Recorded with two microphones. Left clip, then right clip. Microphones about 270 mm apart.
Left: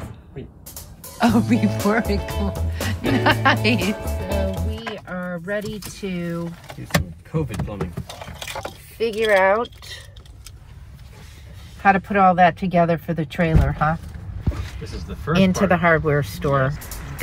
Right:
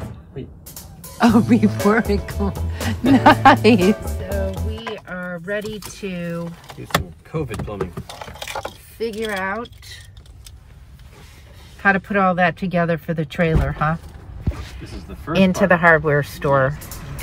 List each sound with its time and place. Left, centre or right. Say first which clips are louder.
0.7 s music: even; centre
6.0 s speech: right 1 dB; centre
7.3 s speech: right 2 dB; centre
9.0 s speech: left 6 dB; left
11.8 s speech: left 1 dB; centre
15.3 s speech: right 3 dB; centre